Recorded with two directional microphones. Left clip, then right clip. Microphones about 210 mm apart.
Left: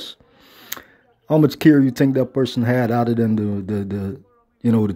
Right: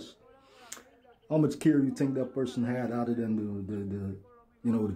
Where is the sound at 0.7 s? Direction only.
35° left (ahead or behind).